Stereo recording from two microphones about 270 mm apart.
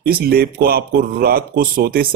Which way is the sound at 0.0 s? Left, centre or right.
Right.